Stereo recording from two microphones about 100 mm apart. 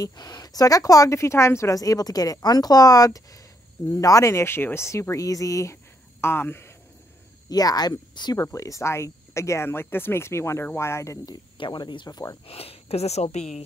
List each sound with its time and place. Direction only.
0.0 s a woman's voice: 40° left (ahead or behind); by 6.7 s 25° left (ahead or behind)
7.4 s speech: 40° left (ahead or behind)
8.4 s speech: 30° left (ahead or behind)
11.2 s speech: 50° left (ahead or behind)
12.4 s a woman's voice: 80° left